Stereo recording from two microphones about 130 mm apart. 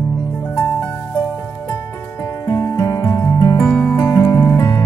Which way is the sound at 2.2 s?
25° left (ahead or behind).